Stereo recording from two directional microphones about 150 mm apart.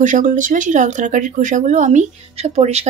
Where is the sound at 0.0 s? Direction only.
60° right (ahead or behind).